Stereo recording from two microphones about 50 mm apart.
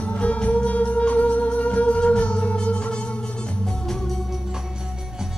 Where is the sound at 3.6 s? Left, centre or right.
Centre.